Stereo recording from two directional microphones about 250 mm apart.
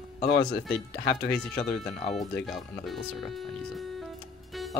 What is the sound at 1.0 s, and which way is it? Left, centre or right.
Speech, left.